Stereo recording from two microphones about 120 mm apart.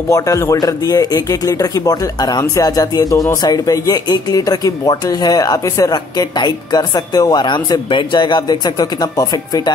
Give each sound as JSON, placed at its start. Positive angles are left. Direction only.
{"t": 0.1, "sound": "speech", "side_deg": 30}